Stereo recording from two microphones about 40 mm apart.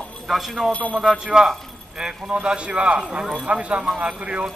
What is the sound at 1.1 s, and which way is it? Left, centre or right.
A man's voice, centre.